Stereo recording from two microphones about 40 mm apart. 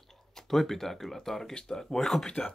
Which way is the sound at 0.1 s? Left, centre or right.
Centre.